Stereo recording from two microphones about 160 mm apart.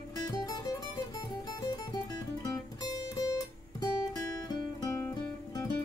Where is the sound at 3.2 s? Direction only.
25° left (ahead or behind).